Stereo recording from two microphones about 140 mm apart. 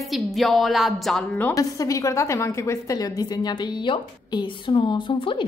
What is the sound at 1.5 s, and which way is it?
A woman's voice, 25° left (ahead or behind).